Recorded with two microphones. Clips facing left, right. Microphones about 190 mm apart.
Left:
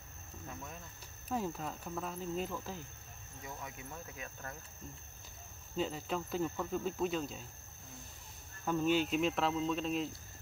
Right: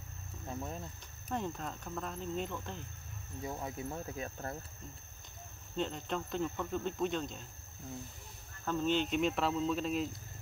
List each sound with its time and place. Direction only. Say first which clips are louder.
0.5 s speech: right 7 dB; 30° right (ahead or behind)
1.3 s speech: left 1 dB; 5° left (ahead or behind)
3.4 s speech: right 7 dB; 30° right (ahead or behind)
5.8 s speech: even; 5° left (ahead or behind)
8.6 s speech: left 1 dB; 10° left (ahead or behind)